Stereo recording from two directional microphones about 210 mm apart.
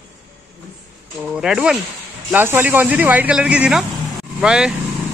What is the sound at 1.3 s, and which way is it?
A man's voice, 5° right (ahead or behind).